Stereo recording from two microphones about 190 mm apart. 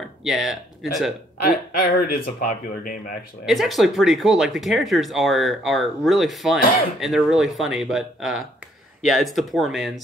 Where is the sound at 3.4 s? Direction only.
Centre (ahead or behind).